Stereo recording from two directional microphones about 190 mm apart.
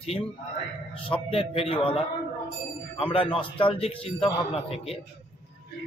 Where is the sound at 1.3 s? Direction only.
30° left (ahead or behind).